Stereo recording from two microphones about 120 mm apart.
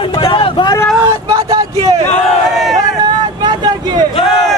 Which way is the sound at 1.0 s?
30° right (ahead or behind).